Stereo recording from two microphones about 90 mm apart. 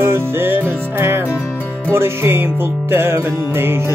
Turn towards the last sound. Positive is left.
turn(degrees=-25)  # may be behind; listen again after turning